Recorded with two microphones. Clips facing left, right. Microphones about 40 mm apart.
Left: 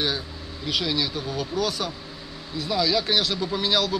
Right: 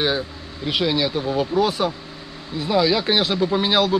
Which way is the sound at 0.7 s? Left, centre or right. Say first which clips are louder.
Right 5 dB; right.